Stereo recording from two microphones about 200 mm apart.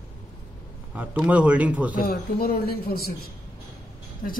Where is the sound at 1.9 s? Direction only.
50° left (ahead or behind).